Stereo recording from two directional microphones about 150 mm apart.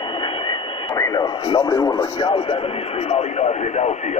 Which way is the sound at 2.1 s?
35° left (ahead or behind).